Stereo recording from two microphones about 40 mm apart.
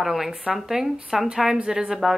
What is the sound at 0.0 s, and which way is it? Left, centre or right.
Speech, centre.